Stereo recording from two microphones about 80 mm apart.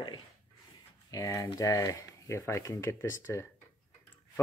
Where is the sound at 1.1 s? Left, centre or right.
Left.